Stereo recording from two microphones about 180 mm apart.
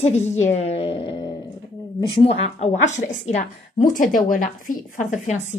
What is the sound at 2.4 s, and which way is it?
A woman's voice, 35° left (ahead or behind).